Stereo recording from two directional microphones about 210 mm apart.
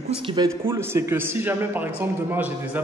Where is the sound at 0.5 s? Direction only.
10° right (ahead or behind).